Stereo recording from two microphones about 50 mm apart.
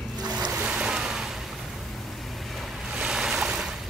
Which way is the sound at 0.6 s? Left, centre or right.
Centre.